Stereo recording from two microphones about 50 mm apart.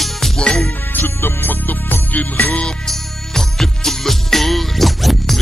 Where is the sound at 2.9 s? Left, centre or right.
Centre.